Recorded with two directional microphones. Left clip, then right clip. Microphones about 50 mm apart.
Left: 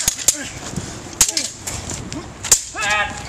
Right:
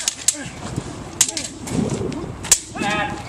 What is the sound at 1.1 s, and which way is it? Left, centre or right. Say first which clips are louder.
Skateboard: left 3 dB; right.